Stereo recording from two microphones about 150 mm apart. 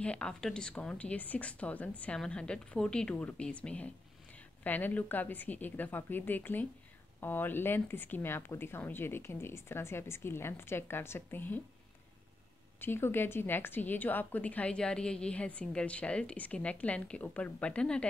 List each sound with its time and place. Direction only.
0.0 s a woman's voice: 5° left (ahead or behind)
12.8 s a woman's voice: 15° left (ahead or behind)